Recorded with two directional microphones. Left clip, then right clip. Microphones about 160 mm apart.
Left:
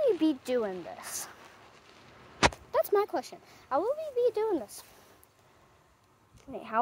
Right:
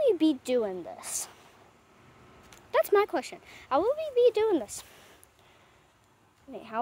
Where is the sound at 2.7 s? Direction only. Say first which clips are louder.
Right 3 dB; 30° right (ahead or behind).